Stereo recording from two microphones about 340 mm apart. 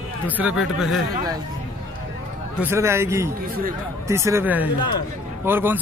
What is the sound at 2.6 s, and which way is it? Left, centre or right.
A man's voice, centre.